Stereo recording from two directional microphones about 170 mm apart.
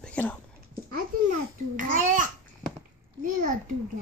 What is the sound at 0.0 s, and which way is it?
Dog, 10° left (ahead or behind).